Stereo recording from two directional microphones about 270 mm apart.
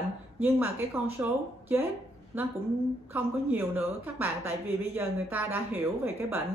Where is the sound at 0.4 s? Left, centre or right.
Centre.